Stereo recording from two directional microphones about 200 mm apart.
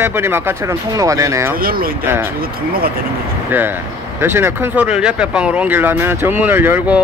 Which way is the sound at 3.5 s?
10° right (ahead or behind).